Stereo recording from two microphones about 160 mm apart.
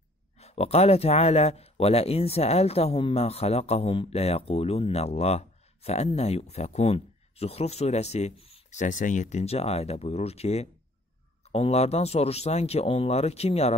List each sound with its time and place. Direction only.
0.4 s speech: 40° left (ahead or behind)